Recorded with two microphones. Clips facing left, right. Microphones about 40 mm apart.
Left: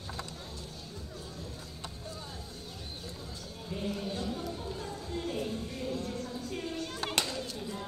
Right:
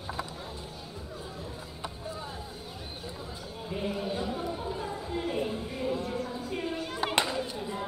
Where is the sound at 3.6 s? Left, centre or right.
Centre.